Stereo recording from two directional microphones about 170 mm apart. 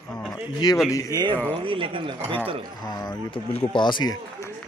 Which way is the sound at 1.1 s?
25° right (ahead or behind).